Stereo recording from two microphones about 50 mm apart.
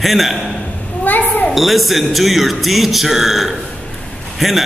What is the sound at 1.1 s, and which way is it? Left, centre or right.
Speech, left.